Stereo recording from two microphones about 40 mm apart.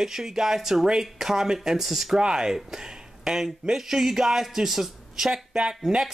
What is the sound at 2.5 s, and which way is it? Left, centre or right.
A man's voice, centre.